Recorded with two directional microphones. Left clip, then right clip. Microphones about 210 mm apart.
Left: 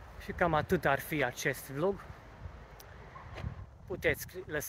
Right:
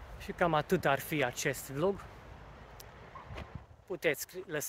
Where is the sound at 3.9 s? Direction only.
5° right (ahead or behind).